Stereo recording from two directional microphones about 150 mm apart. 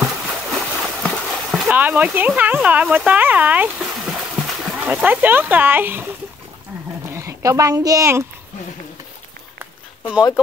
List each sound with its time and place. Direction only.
0.0 s a sound: 5° right (ahead or behind)
1.0 s horse: centre (ahead or behind)
1.7 s speech: 10° right (ahead or behind)
7.1 s speech: 20° right (ahead or behind)